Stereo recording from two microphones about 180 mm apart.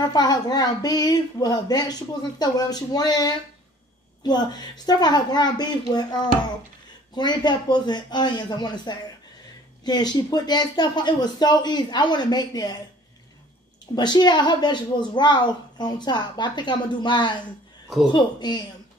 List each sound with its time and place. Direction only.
0.0 s a woman's voice: 20° left (ahead or behind)
13.9 s a woman's voice: 25° left (ahead or behind)